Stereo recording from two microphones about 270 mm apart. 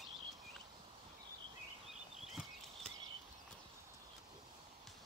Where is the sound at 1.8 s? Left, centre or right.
Centre.